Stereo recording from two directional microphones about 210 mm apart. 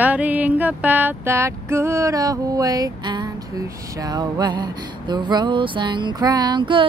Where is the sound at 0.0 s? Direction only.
5° right (ahead or behind).